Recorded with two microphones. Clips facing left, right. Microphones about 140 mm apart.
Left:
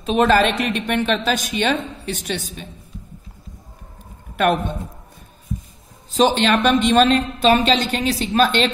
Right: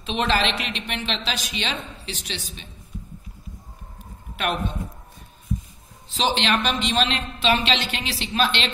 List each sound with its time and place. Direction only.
0.0 s a woman's voice: 45° left (ahead or behind)
4.4 s a woman's voice: 50° left (ahead or behind)
6.0 s a woman's voice: 45° left (ahead or behind)